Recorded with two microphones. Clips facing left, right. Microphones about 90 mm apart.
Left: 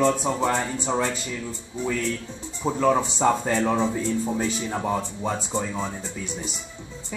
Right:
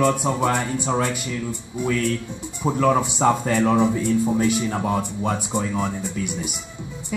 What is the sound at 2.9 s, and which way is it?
A woman's voice, 15° right (ahead or behind).